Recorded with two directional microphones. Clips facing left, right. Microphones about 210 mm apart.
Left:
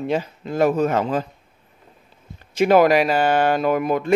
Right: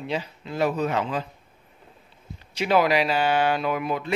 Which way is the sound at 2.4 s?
50° left (ahead or behind).